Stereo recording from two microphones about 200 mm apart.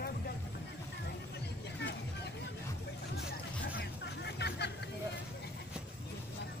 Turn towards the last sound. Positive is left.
turn(degrees=60)  # may be behind; listen again after turning